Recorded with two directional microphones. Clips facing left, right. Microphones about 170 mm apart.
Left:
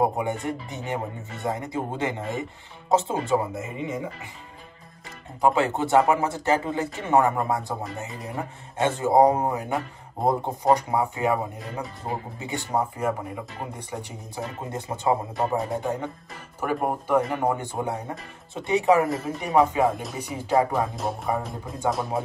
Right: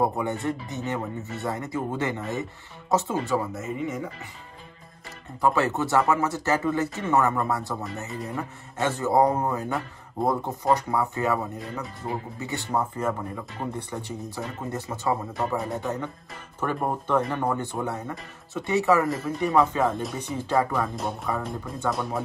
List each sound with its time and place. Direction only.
0.0 s speech: 15° left (ahead or behind)
2.9 s speech: 30° left (ahead or behind)
5.4 s speech: 15° left (ahead or behind)
20.0 s speech: 5° left (ahead or behind)
20.9 s speech: centre (ahead or behind)